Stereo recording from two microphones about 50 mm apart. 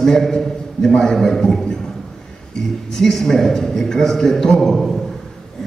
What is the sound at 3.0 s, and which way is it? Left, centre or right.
A man's voice, centre.